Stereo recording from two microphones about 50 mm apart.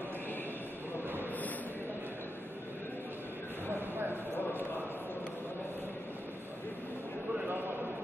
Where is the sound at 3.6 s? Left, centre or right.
Right.